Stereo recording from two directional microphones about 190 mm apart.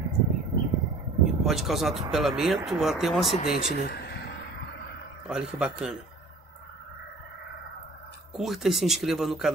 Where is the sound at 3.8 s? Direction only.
55° left (ahead or behind).